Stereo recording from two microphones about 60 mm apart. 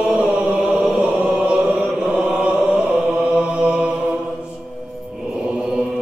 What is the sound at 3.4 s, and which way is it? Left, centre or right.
Mantra, centre.